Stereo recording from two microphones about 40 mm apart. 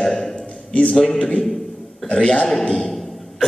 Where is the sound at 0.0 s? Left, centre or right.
Centre.